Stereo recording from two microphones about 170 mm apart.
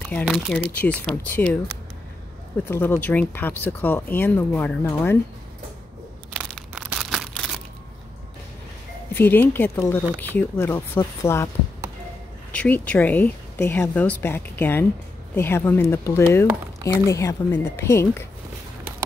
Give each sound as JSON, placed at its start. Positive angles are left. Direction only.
{"t": 0.1, "sound": "speech", "side_deg": 10}
{"t": 2.7, "sound": "speech", "side_deg": 10}
{"t": 6.5, "sound": "crumpling", "side_deg": -5}
{"t": 9.1, "sound": "speech", "side_deg": 10}
{"t": 12.5, "sound": "speech", "side_deg": 10}